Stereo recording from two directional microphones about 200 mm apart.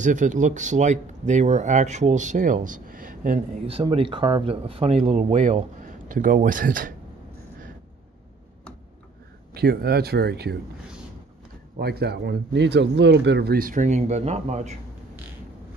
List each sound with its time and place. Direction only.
0.0 s speech: 40° right (ahead or behind)
3.7 s speech: 25° right (ahead or behind); by 6.9 s 40° right (ahead or behind)
9.5 s speech: 50° right (ahead or behind)
11.8 s speech: 55° right (ahead or behind); by 14.8 s 35° right (ahead or behind)